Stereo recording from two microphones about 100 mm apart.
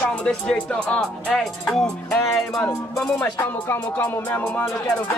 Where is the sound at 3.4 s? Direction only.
20° left (ahead or behind).